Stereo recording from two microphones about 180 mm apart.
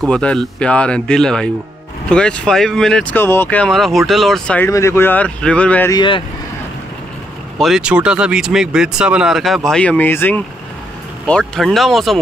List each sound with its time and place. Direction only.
0.1 s speech: 5° left (ahead or behind)
5.9 s speech: 25° left (ahead or behind)
7.5 s speech: centre (ahead or behind)